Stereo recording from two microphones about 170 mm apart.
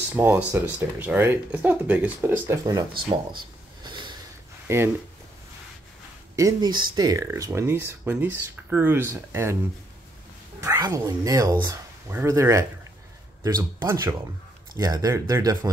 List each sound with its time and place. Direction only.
0.1 s speech: 10° right (ahead or behind)
2.9 s a sound: 30° right (ahead or behind)
4.6 s speech: 15° right (ahead or behind)
6.3 s speech: 20° right (ahead or behind)
10.6 s speech: 20° right (ahead or behind)